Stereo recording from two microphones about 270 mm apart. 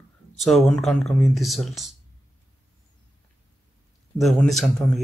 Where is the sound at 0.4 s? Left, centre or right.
Centre.